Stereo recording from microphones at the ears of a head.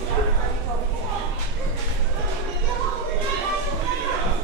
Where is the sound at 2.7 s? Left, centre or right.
Right.